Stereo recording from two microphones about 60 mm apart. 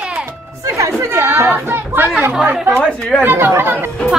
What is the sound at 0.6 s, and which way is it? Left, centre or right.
Chatter, right.